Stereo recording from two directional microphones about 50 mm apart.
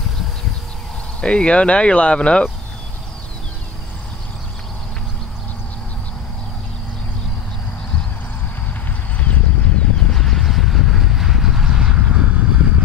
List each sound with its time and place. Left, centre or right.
1.2 s speech: left
9.2 s clip-clop: left
10.1 s vehicle: centre; by 12.8 s right